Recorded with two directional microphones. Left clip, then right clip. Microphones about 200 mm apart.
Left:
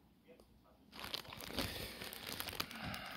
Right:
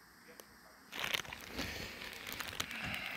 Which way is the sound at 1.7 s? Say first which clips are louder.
Right 3 dB; 10° left (ahead or behind).